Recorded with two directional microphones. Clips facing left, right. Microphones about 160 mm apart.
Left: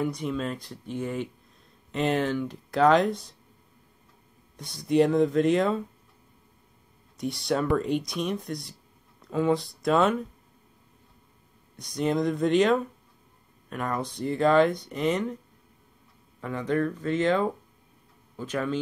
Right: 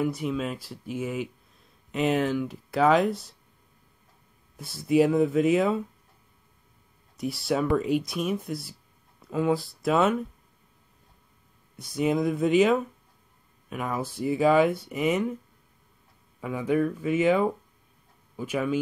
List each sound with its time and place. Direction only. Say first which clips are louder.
0.0 s speech: right 1 dB; 5° right (ahead or behind)
4.6 s speech: right 1 dB; 5° right (ahead or behind)
7.2 s speech: even; 5° right (ahead or behind)
11.7 s speech: right 1 dB; 5° right (ahead or behind)
16.3 s speech: right 2 dB; 10° right (ahead or behind)